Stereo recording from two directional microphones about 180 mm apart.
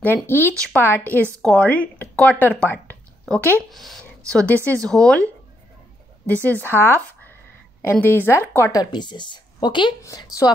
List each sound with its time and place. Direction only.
0.0 s speech: 10° left (ahead or behind)
6.4 s a woman's voice: 10° left (ahead or behind)